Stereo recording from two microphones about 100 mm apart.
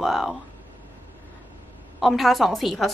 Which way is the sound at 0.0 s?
Centre (ahead or behind).